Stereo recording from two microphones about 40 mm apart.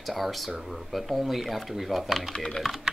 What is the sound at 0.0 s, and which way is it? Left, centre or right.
Speech, centre.